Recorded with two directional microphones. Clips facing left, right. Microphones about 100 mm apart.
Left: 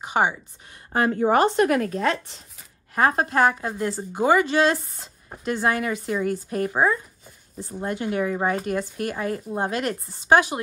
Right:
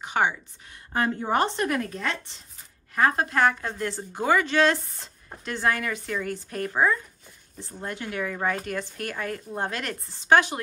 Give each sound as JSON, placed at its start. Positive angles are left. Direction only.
{"t": 0.0, "sound": "a woman's voice", "side_deg": 15}
{"t": 1.1, "sound": "a woman's voice", "side_deg": 60}
{"t": 2.9, "sound": "speech", "side_deg": 30}
{"t": 3.3, "sound": "a woman's voice", "side_deg": 15}